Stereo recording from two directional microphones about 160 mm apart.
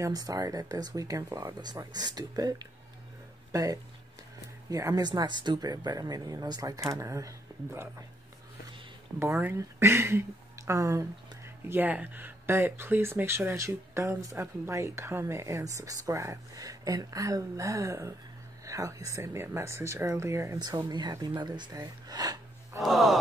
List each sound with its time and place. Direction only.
0.0 s speech: 20° right (ahead or behind)
9.2 s speech: 15° right (ahead or behind)
22.8 s sigh: centre (ahead or behind)